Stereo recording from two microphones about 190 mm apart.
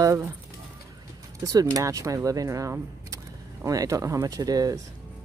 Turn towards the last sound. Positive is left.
turn(degrees=-20)  # may be behind; listen again after turning